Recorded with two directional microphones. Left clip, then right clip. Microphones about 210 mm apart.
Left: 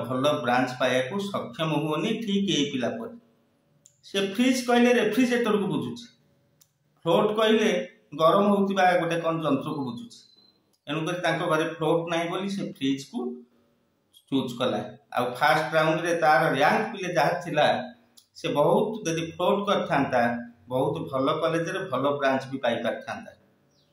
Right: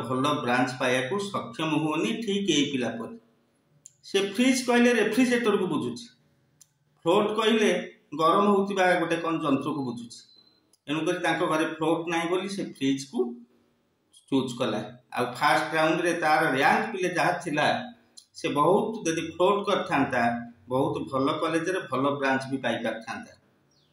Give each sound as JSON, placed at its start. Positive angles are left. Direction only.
{"t": 0.1, "sound": "speech", "side_deg": 15}
{"t": 4.0, "sound": "speech", "side_deg": 15}
{"t": 14.3, "sound": "speech", "side_deg": 15}